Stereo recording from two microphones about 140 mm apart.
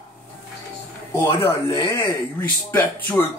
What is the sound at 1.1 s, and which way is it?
Speech, 25° left (ahead or behind).